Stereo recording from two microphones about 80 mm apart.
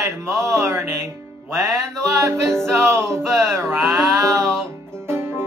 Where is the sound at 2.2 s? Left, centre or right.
Right.